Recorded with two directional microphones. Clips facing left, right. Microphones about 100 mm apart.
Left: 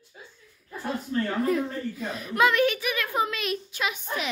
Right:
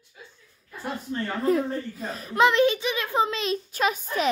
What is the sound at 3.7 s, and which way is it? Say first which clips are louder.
Speech: right 5 dB; 40° right (ahead or behind).